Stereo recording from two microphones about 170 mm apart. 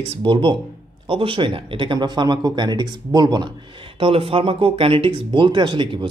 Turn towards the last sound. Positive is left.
turn(degrees=-30)  # may be behind; listen again after turning